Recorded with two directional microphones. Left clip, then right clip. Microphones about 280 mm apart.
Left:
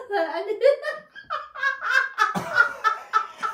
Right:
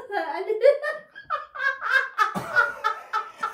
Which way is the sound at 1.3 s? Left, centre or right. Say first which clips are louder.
Even; centre.